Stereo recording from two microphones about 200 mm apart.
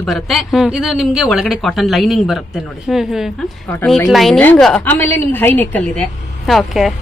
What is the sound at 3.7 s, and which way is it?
A woman's voice, 10° left (ahead or behind).